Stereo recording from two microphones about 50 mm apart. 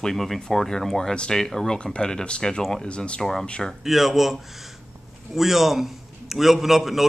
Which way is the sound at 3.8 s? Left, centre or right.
Centre.